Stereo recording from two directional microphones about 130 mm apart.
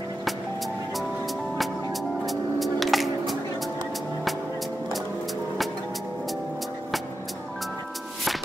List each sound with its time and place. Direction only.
2.2 s music: centre (ahead or behind)